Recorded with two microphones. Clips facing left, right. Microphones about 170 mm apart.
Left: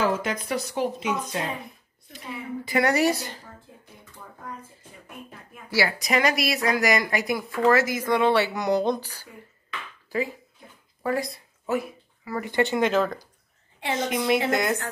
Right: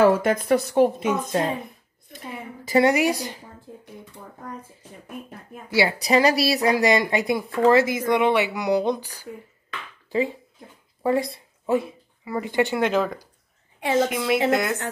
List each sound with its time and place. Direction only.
0.0 s a woman's voice: 55° right (ahead or behind)
2.8 s speech: 15° right (ahead or behind)
5.7 s speech: 25° right (ahead or behind)
11.0 s speech: 25° right (ahead or behind)
12.7 s a woman's voice: 10° right (ahead or behind)